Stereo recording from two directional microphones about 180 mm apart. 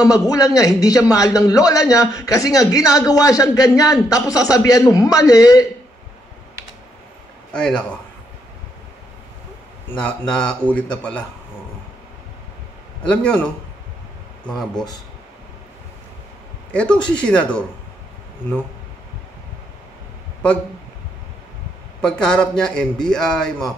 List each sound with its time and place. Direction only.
0.0 s a man's voice: 20° left (ahead or behind)
7.5 s a man's voice: 5° left (ahead or behind)
9.8 s a man's voice: 5° left (ahead or behind)
13.1 s a man's voice: 5° left (ahead or behind)
16.7 s a man's voice: 5° left (ahead or behind)
22.0 s a man's voice: 5° left (ahead or behind)